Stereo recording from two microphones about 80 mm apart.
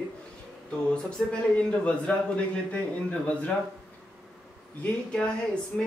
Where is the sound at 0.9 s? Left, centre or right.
Centre.